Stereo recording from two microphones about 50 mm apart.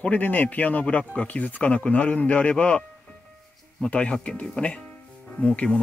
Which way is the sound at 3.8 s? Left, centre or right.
Left.